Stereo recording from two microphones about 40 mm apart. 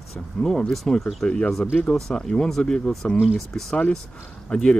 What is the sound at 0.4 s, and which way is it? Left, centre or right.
Speech, centre.